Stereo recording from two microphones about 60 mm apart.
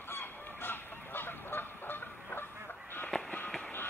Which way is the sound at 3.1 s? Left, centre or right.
Centre.